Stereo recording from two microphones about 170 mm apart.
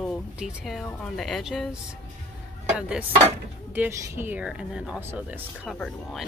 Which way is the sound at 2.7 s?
5° right (ahead or behind).